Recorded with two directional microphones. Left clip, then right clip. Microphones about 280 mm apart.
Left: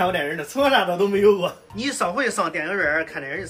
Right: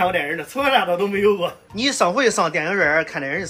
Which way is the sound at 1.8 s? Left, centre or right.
Centre.